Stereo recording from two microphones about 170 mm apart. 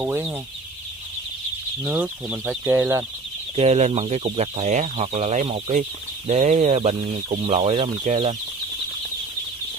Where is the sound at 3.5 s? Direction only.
40° right (ahead or behind).